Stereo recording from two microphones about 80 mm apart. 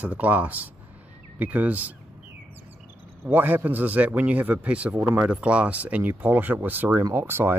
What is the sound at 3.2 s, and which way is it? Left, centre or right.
Speech, right.